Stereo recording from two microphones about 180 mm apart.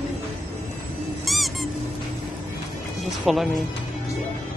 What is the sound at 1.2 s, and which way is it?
Squeak, centre (ahead or behind).